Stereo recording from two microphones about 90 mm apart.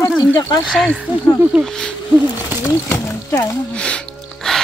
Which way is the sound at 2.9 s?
25° left (ahead or behind).